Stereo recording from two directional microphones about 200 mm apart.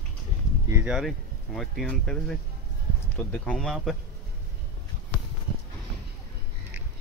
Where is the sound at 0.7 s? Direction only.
5° right (ahead or behind).